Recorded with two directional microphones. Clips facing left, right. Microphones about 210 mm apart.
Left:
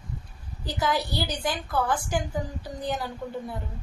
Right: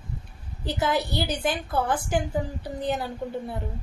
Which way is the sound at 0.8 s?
20° right (ahead or behind).